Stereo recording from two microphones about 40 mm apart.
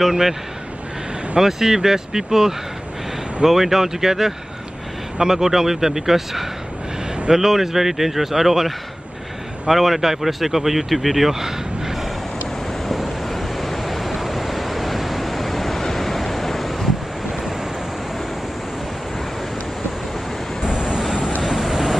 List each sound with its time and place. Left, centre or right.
0.1 s speech: centre
1.4 s speech: centre
11.3 s a sound: centre
12.8 s waves: centre
15.8 s vehicle: centre
17.3 s waves: centre
20.6 s vehicle: centre
21.4 s vehicle: centre